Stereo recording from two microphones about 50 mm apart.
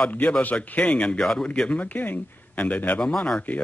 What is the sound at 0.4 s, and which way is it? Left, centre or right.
Speech, left.